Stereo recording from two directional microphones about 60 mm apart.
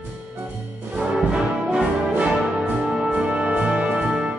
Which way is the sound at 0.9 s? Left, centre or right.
Centre.